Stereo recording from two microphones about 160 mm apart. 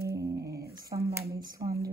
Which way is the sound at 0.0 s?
20° right (ahead or behind).